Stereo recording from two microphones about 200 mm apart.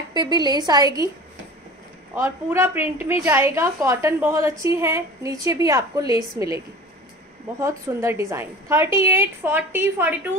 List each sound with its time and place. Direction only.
0.1 s a woman's voice: 20° right (ahead or behind)
2.1 s a woman's voice: 10° right (ahead or behind)